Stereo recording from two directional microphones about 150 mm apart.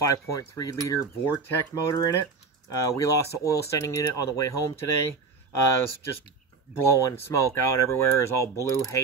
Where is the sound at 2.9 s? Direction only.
20° left (ahead or behind).